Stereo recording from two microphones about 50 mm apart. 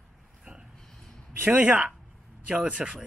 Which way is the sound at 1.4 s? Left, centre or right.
Right.